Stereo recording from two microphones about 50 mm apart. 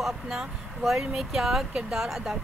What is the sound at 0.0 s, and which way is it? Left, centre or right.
Speech, centre.